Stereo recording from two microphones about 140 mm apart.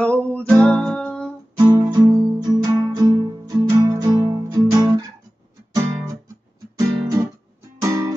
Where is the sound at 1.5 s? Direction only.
25° right (ahead or behind).